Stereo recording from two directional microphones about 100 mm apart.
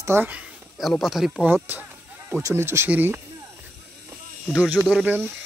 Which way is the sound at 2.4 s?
25° right (ahead or behind).